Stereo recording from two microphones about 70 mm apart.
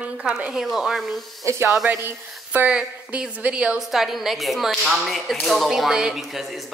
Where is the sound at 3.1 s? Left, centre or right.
Centre.